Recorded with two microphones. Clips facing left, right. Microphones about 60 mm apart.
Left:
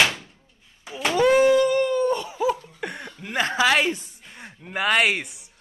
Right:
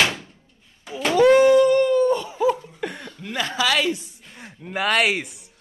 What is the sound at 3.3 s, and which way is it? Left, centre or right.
Speech, left.